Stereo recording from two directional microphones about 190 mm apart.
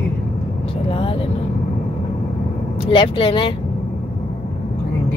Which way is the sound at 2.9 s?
25° left (ahead or behind).